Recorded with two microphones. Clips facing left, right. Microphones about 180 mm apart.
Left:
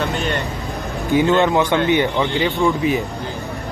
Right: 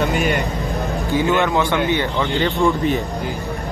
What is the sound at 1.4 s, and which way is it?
Speech, 20° left (ahead or behind).